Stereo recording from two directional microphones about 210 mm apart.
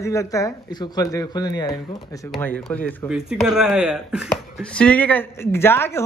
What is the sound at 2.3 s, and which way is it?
Speech, 5° left (ahead or behind).